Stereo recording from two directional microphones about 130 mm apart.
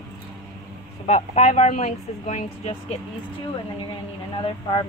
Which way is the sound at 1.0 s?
60° left (ahead or behind).